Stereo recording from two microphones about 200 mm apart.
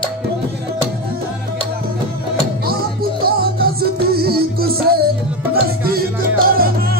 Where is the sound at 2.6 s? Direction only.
50° right (ahead or behind).